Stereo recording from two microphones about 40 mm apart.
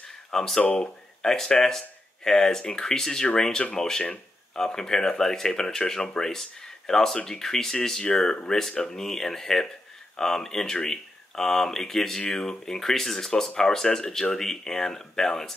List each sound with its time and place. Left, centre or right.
0.3 s speech: centre
0.6 s speech: left
1.2 s speech: centre